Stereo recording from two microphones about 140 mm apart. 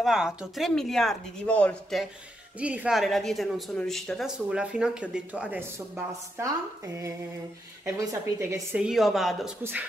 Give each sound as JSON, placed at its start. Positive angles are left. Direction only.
{"t": 0.0, "sound": "a woman's voice", "side_deg": -5}
{"t": 2.6, "sound": "a woman's voice", "side_deg": -10}
{"t": 7.8, "sound": "speech", "side_deg": -20}
{"t": 8.7, "sound": "a woman's voice", "side_deg": -5}
{"t": 9.6, "sound": "speech", "side_deg": -15}